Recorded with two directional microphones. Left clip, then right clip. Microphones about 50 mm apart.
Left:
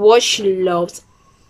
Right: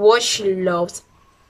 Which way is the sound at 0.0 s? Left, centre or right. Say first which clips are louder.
Left 3 dB; left.